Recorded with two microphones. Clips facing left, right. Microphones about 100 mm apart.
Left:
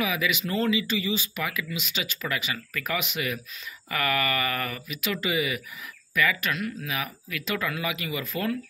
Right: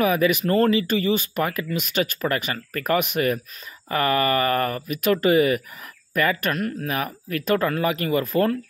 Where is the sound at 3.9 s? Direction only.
35° right (ahead or behind).